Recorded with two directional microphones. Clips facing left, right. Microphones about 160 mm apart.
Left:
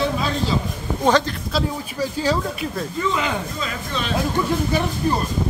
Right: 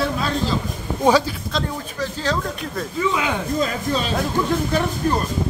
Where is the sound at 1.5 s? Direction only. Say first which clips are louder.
Left 3 dB; 10° left (ahead or behind).